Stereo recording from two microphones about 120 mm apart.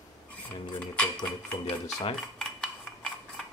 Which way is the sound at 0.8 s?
10° left (ahead or behind).